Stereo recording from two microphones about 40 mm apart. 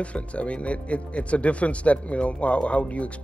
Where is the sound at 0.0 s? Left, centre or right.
Left.